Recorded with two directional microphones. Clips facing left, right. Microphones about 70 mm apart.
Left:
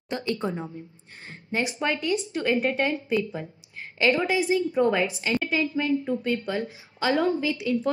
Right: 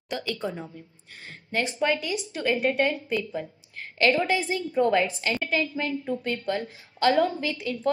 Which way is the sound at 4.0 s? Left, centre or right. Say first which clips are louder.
Even; centre.